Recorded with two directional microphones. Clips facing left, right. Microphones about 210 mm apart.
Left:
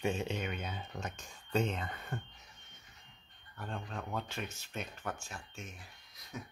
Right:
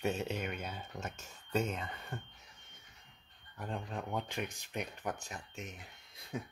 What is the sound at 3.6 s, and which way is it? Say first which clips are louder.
Speech: right 2 dB; 15° right (ahead or behind).